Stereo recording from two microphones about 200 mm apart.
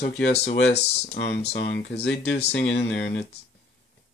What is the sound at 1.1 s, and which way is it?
Speech, 55° left (ahead or behind).